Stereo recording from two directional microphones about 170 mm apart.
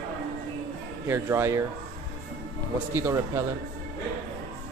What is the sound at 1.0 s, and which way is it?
Speech, 15° right (ahead or behind).